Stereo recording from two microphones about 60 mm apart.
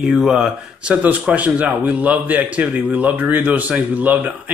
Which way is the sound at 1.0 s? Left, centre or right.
Right.